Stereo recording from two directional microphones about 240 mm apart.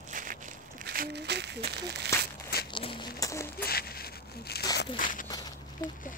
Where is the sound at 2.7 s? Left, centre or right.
Left.